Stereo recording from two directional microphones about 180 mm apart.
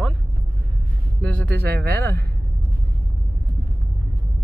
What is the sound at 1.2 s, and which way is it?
Music, 5° left (ahead or behind).